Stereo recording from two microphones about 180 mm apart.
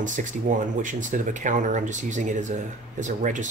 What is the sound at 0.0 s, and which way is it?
Speech, 45° right (ahead or behind).